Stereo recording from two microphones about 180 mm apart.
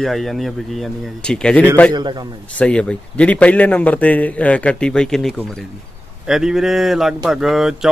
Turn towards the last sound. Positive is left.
turn(degrees=0)  # may be behind; listen again after turning